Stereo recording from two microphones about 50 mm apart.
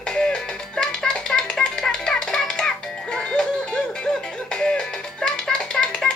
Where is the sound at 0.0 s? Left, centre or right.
Centre.